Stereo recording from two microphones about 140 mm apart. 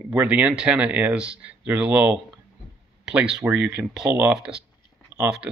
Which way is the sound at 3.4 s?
15° right (ahead or behind).